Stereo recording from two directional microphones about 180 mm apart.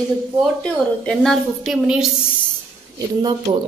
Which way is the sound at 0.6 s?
5° left (ahead or behind).